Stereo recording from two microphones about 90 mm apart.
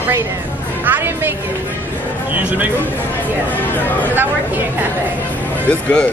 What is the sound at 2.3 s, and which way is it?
Speech, 20° right (ahead or behind).